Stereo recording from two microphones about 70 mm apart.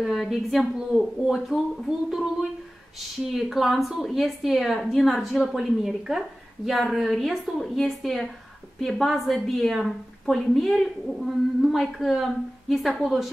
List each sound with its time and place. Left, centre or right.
0.0 s a woman's voice: centre
3.3 s a woman's voice: centre